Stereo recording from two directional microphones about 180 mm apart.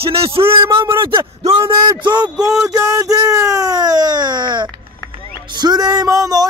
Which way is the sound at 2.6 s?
15° right (ahead or behind).